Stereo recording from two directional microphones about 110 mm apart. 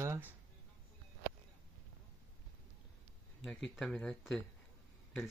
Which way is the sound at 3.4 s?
Centre (ahead or behind).